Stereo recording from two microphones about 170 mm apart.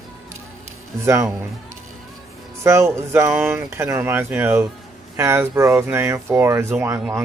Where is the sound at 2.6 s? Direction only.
15° right (ahead or behind).